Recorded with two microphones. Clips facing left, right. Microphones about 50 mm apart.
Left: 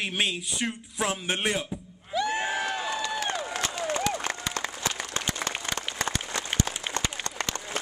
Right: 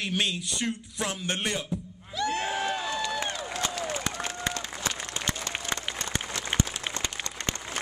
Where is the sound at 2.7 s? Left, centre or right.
Centre.